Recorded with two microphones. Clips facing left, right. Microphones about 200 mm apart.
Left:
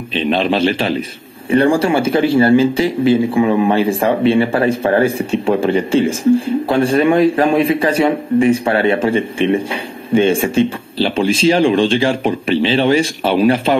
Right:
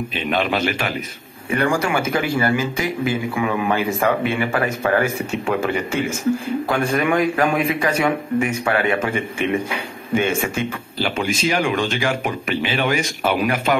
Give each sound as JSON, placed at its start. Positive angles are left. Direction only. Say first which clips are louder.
{"t": 0.1, "sound": "a man's voice", "louder": "left 8 dB", "side_deg": 30}